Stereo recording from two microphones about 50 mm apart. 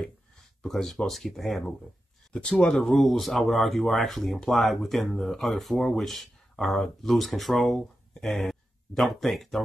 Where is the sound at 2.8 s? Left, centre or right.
Centre.